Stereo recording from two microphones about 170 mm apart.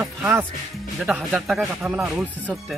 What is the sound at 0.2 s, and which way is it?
Speech, 15° right (ahead or behind).